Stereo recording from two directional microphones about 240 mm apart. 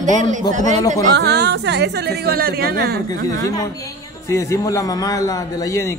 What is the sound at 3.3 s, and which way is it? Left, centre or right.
A man's voice, centre.